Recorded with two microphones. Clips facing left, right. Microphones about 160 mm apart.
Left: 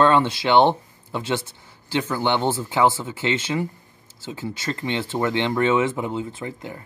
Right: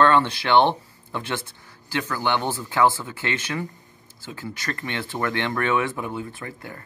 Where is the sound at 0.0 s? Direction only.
15° left (ahead or behind).